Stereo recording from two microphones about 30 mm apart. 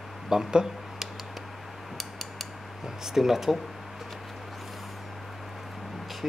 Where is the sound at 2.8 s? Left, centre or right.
Centre.